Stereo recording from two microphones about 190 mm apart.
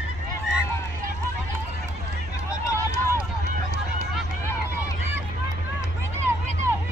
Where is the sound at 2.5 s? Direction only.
15° left (ahead or behind).